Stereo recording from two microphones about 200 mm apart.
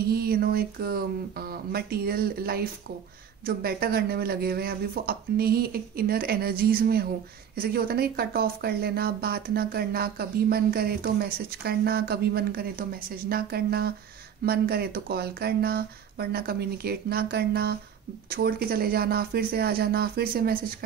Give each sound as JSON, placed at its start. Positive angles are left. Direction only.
{"t": 0.0, "sound": "speech", "side_deg": -50}